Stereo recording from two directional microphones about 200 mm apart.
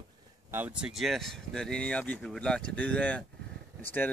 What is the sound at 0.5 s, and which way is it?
Speech, 5° right (ahead or behind).